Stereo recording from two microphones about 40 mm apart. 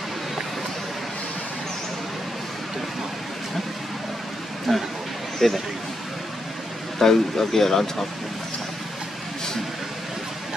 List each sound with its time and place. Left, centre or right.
4.7 s a sound: centre
5.4 s speech: centre
7.0 s speech: centre